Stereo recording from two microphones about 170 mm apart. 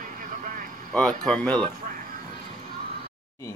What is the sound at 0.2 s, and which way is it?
Vehicle, 50° right (ahead or behind).